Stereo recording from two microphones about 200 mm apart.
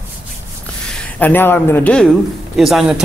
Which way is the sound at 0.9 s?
10° left (ahead or behind).